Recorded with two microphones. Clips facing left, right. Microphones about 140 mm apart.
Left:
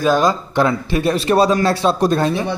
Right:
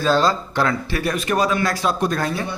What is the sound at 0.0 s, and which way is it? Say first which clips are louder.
Speech: left 3 dB; 15° left (ahead or behind).